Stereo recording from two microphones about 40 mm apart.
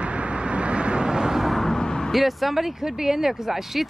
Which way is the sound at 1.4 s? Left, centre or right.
Centre.